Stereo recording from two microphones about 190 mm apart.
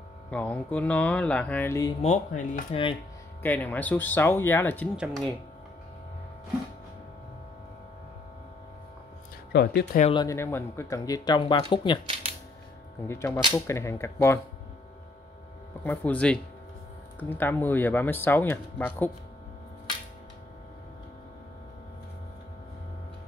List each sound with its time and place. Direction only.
0.3 s speech: 5° left (ahead or behind)
2.0 s speech: 40° left (ahead or behind)
2.7 s speech: 30° left (ahead or behind)
3.4 s speech: 10° left (ahead or behind)
4.9 s speech: centre (ahead or behind)
9.5 s speech: 65° left (ahead or behind)
10.1 s speech: 15° left (ahead or behind)
13.0 s speech: 15° left (ahead or behind)
15.8 s speech: 10° left (ahead or behind)